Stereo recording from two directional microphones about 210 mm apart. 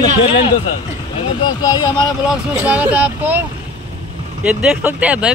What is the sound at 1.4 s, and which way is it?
Speech, 20° left (ahead or behind).